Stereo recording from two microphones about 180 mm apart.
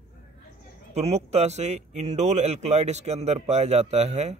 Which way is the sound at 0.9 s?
35° right (ahead or behind).